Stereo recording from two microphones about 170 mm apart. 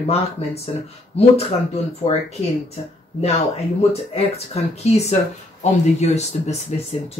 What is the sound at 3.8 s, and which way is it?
Speech, 35° left (ahead or behind).